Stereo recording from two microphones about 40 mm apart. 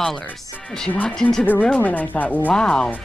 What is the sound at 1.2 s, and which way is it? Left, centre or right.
Speech, centre.